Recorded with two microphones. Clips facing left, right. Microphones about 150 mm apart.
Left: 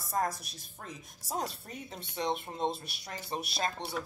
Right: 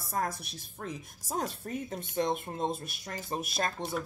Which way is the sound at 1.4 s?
50° right (ahead or behind).